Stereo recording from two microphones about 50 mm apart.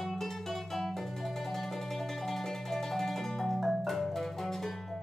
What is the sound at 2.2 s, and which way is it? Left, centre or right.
Music, centre.